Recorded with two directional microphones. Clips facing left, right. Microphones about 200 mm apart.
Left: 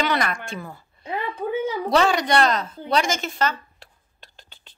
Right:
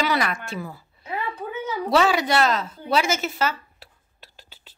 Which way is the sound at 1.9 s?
5° right (ahead or behind).